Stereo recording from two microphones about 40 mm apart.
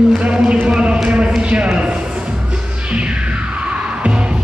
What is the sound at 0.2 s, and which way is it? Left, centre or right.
Music, right.